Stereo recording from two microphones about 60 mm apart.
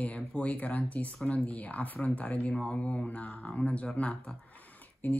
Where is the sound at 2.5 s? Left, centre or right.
Centre.